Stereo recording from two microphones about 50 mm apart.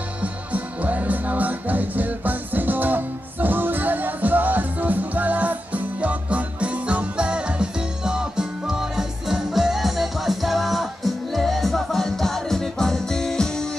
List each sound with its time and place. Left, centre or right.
0.2 s music: right; by 13.7 s centre